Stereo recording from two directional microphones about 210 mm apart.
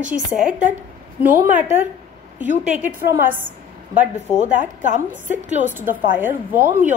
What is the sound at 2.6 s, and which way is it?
Speech, 5° right (ahead or behind).